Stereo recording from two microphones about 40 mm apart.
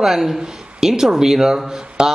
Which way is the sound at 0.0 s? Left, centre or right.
Centre.